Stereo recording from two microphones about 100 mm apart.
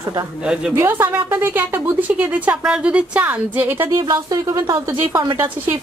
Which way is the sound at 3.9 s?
40° right (ahead or behind).